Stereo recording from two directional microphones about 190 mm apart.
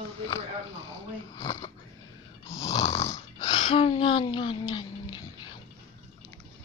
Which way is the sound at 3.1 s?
25° left (ahead or behind).